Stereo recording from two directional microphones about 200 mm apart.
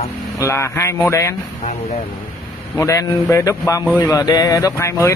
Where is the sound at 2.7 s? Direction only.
15° left (ahead or behind).